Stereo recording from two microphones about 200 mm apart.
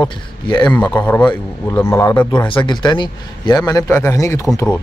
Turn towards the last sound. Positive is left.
turn(degrees=10)  # may be behind; listen again after turning